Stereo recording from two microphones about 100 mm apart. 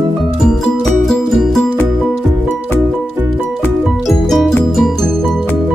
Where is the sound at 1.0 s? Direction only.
Centre (ahead or behind).